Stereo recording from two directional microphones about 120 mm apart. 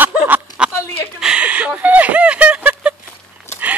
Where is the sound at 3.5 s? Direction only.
20° left (ahead or behind).